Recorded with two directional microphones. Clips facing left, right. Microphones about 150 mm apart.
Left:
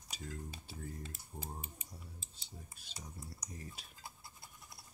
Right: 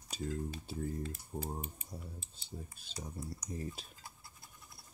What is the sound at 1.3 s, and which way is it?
Speech, 40° right (ahead or behind).